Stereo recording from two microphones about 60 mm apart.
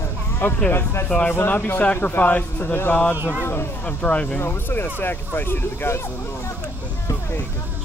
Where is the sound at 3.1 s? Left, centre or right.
Right.